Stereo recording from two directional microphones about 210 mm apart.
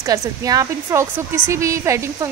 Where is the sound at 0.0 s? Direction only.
15° right (ahead or behind).